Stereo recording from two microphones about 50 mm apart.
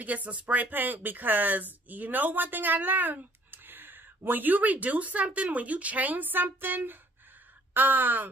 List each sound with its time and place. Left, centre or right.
0.0 s speech: right